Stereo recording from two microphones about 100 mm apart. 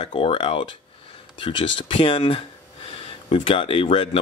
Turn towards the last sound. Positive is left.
turn(degrees=60)  # may be behind; listen again after turning